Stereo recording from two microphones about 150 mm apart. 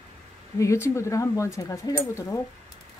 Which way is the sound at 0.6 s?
20° left (ahead or behind).